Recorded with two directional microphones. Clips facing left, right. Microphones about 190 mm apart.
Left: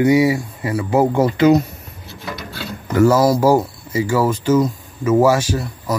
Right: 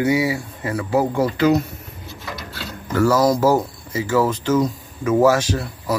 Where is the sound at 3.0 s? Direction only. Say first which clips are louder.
Left 3 dB; 15° left (ahead or behind).